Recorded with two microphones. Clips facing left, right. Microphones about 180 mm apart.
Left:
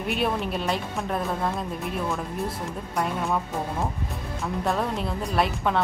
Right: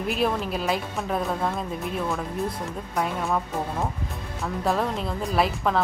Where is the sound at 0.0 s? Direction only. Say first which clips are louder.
Right 1 dB; centre (ahead or behind).